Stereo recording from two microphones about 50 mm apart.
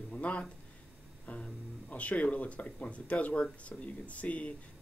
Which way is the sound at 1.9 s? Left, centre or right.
Left.